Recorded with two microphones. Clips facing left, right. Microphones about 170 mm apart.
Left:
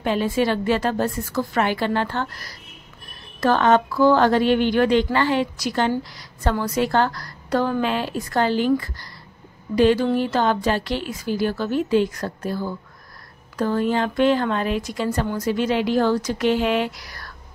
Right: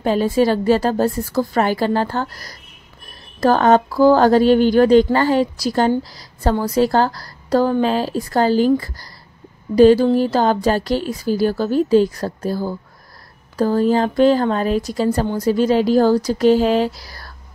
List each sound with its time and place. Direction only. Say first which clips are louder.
0.0 s speech: right 5 dB; 40° right (ahead or behind)